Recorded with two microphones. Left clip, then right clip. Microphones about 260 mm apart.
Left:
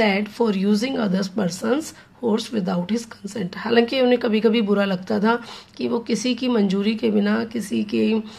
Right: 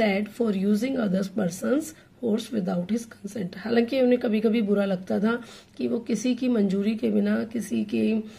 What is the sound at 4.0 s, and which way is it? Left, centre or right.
A woman's voice, centre.